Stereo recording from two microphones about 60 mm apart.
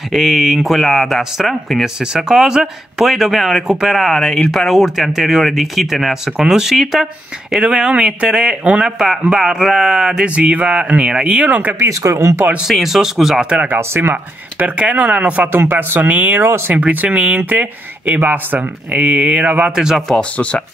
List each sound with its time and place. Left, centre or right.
0.1 s speech: centre
7.9 s speech: centre
8.8 s speech: centre
10.2 s speech: centre
11.9 s speech: right
12.6 s speech: centre
13.7 s speech: right
14.1 s speech: right
15.5 s speech: right
19.7 s speech: centre
20.1 s speech: centre